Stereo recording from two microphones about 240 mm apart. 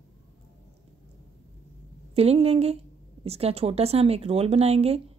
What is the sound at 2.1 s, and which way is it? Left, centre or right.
Speech, right.